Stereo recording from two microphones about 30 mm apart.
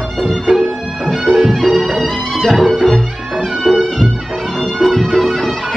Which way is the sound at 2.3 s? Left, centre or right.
Centre.